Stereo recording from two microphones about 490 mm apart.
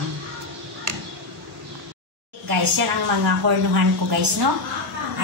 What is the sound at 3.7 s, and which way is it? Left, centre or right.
Speech, right.